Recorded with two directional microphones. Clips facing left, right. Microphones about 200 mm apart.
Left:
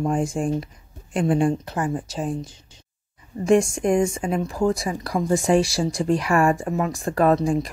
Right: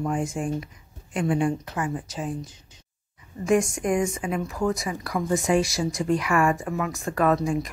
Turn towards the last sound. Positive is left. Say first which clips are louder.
# left 4 dB
turn(degrees=30)  # may be behind; listen again after turning